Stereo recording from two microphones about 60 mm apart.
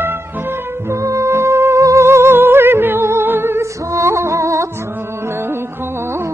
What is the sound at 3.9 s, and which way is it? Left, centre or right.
Music, right.